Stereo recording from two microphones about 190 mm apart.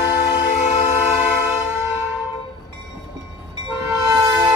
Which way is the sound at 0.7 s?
35° left (ahead or behind).